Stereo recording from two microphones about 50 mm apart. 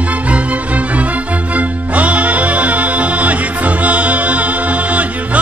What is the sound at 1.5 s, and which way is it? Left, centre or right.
Music, right.